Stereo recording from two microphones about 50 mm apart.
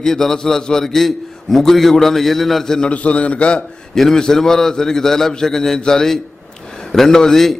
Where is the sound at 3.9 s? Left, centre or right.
Centre.